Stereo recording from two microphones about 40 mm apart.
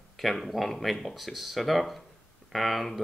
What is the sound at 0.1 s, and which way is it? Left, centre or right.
Speech, centre.